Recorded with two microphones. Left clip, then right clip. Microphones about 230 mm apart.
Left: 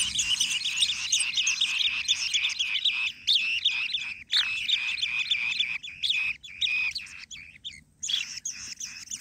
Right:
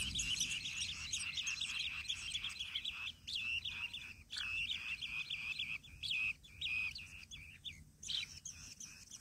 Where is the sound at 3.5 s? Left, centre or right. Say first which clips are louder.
Left 15 dB; centre.